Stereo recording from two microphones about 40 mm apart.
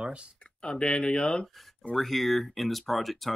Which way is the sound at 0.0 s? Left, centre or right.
Right.